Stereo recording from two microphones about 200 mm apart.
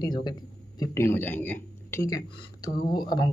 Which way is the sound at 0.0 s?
20° left (ahead or behind).